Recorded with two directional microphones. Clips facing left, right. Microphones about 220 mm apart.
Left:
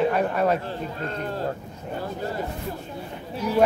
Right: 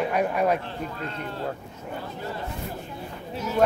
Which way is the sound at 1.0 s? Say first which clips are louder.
Left 4 dB; 40° left (ahead or behind).